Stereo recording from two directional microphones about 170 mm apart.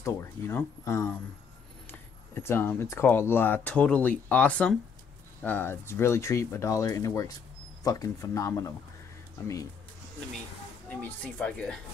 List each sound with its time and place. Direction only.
0.0 s speech: 15° left (ahead or behind)
10.9 s speech: 10° left (ahead or behind)